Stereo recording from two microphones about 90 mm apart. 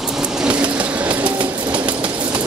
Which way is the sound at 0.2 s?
15° right (ahead or behind).